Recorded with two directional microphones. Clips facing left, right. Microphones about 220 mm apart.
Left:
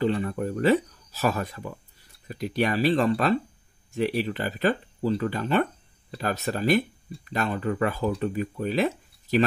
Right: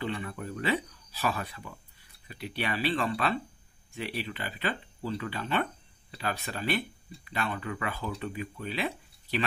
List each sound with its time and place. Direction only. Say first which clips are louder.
0.0 s speech: left 9 dB; 40° left (ahead or behind)